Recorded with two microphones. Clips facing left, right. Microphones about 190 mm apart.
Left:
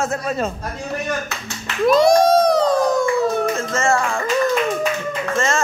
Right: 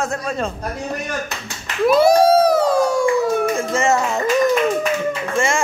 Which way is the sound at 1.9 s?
5° right (ahead or behind).